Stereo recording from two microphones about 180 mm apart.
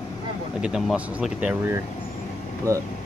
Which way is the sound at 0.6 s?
5° right (ahead or behind).